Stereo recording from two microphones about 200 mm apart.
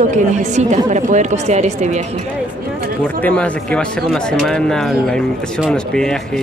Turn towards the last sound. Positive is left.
turn(degrees=0)  # may be behind; listen again after turning